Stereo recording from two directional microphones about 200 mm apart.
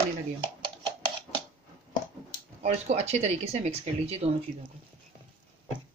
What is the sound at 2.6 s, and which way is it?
Speech, 35° right (ahead or behind).